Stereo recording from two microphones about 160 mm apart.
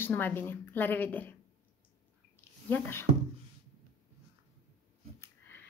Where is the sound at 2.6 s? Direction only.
10° left (ahead or behind).